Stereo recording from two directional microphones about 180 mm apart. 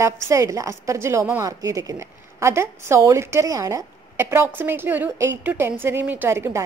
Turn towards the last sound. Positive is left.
turn(degrees=-15)  # may be behind; listen again after turning